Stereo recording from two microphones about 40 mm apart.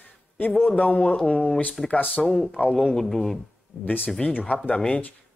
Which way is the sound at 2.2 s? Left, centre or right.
Centre.